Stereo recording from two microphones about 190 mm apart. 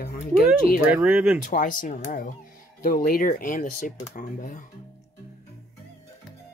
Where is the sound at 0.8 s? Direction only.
10° right (ahead or behind).